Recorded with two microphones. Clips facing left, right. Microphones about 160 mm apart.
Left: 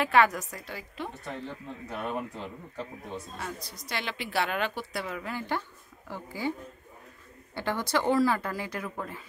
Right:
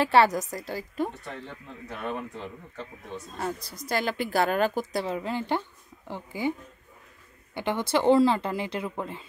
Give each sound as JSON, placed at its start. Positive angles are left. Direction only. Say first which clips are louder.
{"t": 0.0, "sound": "speech", "louder": "right 3 dB", "side_deg": -35}
{"t": 1.1, "sound": "speech", "louder": "left 2 dB", "side_deg": 0}
{"t": 3.3, "sound": "speech", "louder": "right 6 dB", "side_deg": -45}
{"t": 7.5, "sound": "speech", "louder": "right 3 dB", "side_deg": -20}